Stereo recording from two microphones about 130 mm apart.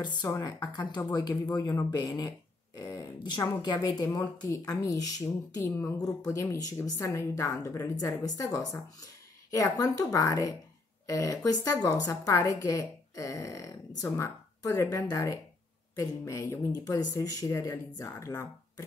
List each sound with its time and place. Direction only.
0.0 s a woman's voice: 35° left (ahead or behind)